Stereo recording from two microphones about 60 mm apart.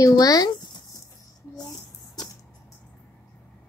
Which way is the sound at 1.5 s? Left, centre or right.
Left.